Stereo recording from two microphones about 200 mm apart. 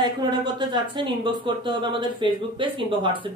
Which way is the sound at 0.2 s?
20° right (ahead or behind).